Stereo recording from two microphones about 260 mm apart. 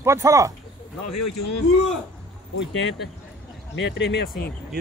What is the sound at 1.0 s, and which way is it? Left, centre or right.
Speech, left.